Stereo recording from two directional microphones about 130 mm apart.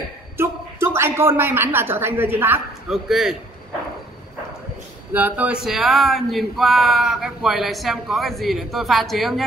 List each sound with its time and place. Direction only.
0.4 s a woman's voice: 20° right (ahead or behind)
2.9 s speech: centre (ahead or behind)
5.1 s speech: 10° right (ahead or behind)